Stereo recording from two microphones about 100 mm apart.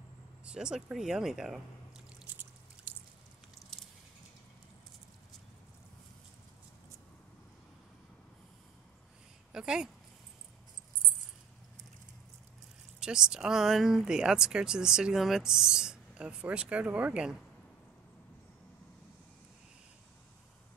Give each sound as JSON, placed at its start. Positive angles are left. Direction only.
{"t": 0.5, "sound": "speech", "side_deg": -5}
{"t": 2.2, "sound": "a sound", "side_deg": -15}
{"t": 9.5, "sound": "speech", "side_deg": -5}
{"t": 13.0, "sound": "speech", "side_deg": -5}